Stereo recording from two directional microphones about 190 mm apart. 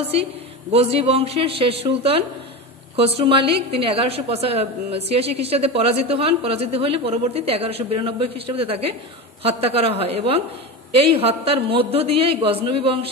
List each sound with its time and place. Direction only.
0.1 s a woman's voice: 30° right (ahead or behind)